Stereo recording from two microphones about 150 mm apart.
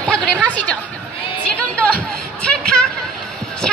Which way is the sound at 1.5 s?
10° left (ahead or behind).